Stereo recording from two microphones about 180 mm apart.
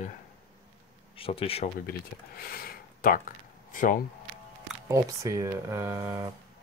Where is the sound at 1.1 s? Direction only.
30° left (ahead or behind).